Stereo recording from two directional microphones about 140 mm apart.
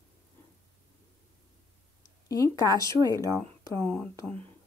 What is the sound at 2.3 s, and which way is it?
Speech, 25° left (ahead or behind).